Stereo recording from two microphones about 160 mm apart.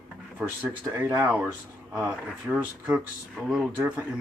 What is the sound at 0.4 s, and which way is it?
Speech, 10° right (ahead or behind).